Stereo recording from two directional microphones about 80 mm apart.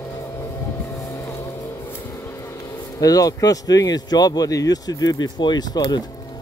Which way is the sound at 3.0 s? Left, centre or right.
Left.